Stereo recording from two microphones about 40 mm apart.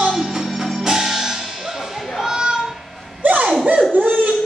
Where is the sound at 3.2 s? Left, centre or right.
Right.